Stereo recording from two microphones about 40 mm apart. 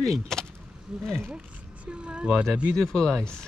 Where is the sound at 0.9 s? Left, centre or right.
Right.